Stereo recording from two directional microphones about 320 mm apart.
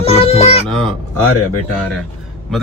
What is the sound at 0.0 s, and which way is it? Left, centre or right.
Music, centre.